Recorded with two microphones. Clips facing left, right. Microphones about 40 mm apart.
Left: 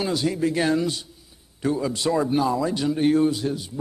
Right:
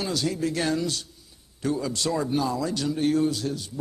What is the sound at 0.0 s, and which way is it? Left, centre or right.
A man's voice, centre.